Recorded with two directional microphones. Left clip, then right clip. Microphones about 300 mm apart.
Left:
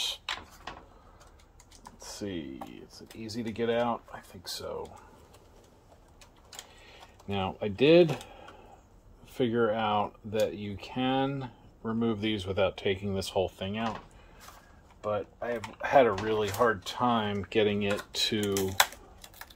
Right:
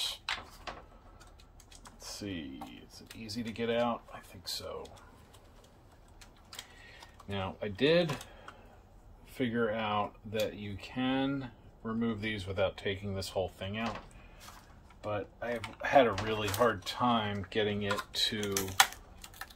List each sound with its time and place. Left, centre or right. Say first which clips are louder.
2.0 s computer keyboard: left 3 dB; left
3.3 s speech: left 4 dB; left
7.2 s speech: left 5 dB; left
9.3 s speech: left 5 dB; left
15.0 s speech: left 5 dB; left
18.8 s typing: even; centre